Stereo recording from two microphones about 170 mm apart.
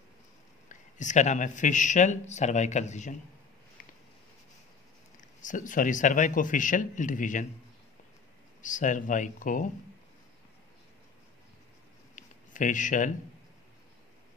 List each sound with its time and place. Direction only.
0.7 s speech: 45° left (ahead or behind)
5.4 s speech: 50° left (ahead or behind)
8.6 s speech: 50° left (ahead or behind)
12.2 s a sound: 50° left (ahead or behind)